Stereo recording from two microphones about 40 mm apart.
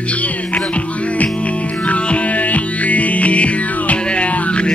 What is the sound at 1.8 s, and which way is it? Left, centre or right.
Music, left.